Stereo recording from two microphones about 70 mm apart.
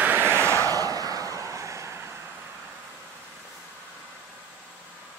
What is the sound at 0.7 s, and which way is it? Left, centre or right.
Vehicle, right.